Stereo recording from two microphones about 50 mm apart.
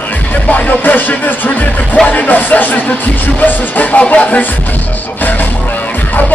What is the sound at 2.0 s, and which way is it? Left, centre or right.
Music, left.